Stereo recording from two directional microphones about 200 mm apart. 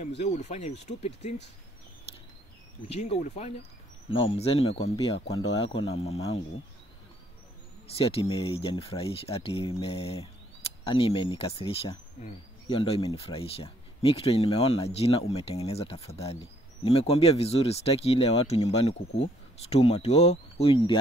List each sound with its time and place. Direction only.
0.2 s speech: 35° left (ahead or behind)
2.9 s speech: 35° left (ahead or behind)
5.3 s speech: 20° left (ahead or behind)
7.8 s speech: 30° left (ahead or behind)